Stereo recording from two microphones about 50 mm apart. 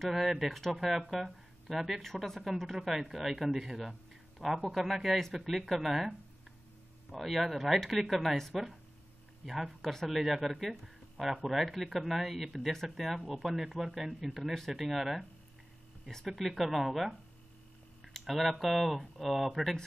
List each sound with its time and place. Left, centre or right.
0.1 s speech: centre
16.3 s speech: centre
18.0 s a sound: centre
18.4 s speech: centre